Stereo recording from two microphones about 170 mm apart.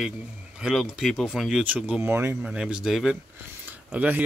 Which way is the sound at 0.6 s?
5° right (ahead or behind).